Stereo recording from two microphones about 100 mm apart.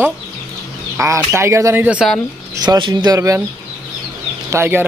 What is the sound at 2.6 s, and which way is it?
Speech, 45° right (ahead or behind).